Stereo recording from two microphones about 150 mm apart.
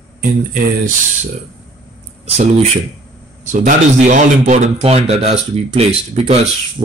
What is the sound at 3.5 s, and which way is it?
Speech, 55° right (ahead or behind).